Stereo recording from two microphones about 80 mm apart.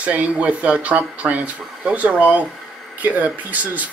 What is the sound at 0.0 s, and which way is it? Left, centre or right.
Speech, centre.